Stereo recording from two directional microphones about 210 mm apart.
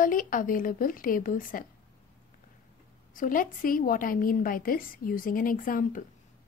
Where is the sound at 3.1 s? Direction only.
40° left (ahead or behind).